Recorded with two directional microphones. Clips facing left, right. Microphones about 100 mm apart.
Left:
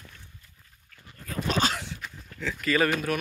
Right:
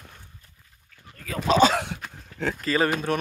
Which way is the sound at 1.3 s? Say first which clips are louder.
Right 8 dB; 80° right.